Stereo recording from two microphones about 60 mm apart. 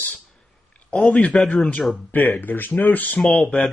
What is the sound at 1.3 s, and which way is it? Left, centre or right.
Speech, centre.